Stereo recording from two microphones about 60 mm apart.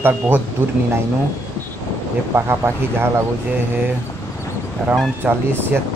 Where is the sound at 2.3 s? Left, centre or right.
Right.